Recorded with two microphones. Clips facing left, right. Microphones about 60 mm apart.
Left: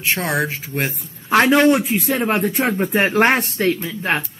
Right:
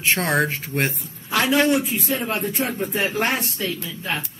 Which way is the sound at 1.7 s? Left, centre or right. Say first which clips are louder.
Left 4 dB; left.